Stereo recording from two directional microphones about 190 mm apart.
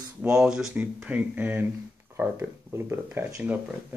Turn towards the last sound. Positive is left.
turn(degrees=-10)  # may be behind; listen again after turning